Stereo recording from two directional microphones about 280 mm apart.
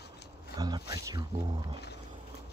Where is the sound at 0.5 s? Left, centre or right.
Centre.